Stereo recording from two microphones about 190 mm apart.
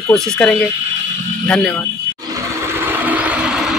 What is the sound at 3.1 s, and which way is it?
Vehicle, 5° right (ahead or behind).